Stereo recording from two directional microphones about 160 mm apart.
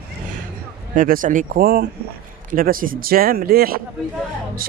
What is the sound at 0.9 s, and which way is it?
Speech, 55° right (ahead or behind).